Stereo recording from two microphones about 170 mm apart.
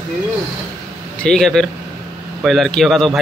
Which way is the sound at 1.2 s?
5° left (ahead or behind).